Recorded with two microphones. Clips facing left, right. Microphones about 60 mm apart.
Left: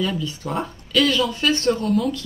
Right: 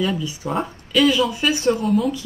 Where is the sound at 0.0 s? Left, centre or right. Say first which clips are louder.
Right 2 dB; centre.